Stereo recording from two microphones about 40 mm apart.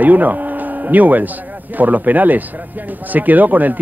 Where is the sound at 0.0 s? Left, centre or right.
Right.